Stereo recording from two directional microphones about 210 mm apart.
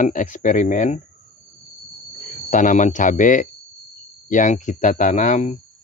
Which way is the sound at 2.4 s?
40° left (ahead or behind).